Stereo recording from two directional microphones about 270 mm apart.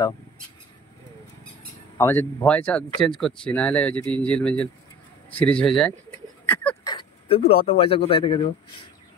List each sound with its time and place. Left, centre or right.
2.0 s speech: centre
5.4 s bird: centre
6.9 s speech: centre